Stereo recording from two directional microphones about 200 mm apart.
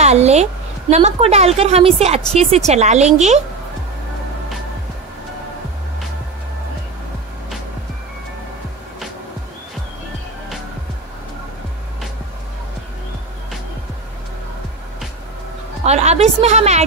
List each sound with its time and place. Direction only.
0.0 s a woman's voice: 35° right (ahead or behind)
15.8 s a woman's voice: 35° right (ahead or behind)